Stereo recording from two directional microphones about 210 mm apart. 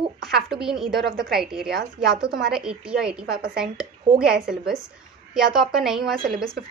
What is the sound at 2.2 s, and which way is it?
Speech, 50° right (ahead or behind).